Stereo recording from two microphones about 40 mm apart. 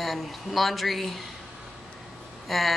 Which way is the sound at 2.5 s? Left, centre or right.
Centre.